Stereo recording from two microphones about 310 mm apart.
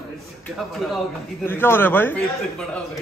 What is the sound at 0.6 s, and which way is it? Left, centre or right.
A man's voice, centre.